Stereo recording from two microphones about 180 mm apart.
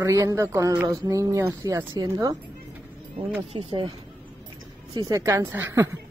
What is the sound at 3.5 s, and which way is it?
Speech, 30° right (ahead or behind).